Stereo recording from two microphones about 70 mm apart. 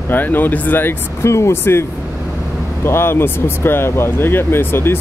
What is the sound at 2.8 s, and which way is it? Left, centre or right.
Speech, left.